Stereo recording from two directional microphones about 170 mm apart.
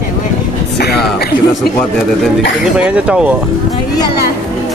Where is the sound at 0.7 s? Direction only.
70° left (ahead or behind).